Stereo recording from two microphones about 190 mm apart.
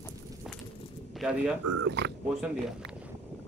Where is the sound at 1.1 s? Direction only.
5° right (ahead or behind).